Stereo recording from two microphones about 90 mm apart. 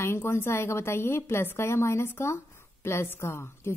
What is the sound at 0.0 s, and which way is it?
A woman's voice, 30° left (ahead or behind).